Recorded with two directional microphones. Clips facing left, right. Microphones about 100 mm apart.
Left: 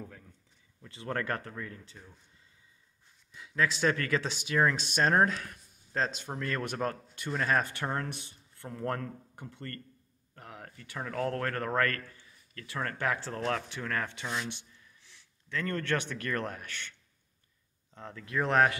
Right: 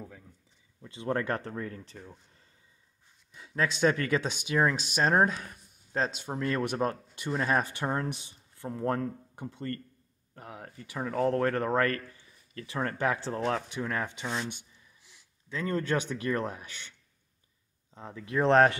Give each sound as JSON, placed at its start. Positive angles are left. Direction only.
{"t": 0.8, "sound": "speech", "side_deg": -20}
{"t": 3.3, "sound": "speech", "side_deg": -30}
{"t": 17.9, "sound": "speech", "side_deg": -10}
{"t": 18.2, "sound": "speech", "side_deg": -25}